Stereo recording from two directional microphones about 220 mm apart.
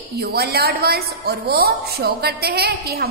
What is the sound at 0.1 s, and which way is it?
A woman's voice, 45° right (ahead or behind).